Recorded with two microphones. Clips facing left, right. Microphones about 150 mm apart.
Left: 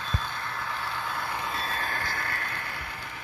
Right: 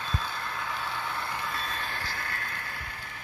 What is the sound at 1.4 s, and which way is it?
Vehicle, 30° left (ahead or behind).